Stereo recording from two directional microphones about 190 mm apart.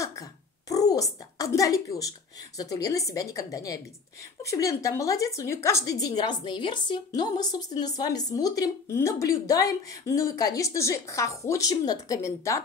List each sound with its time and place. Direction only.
0.2 s a child's voice: 20° left (ahead or behind)